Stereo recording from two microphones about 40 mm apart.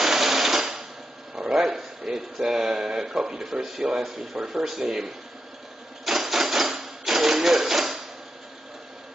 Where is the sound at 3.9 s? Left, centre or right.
Centre.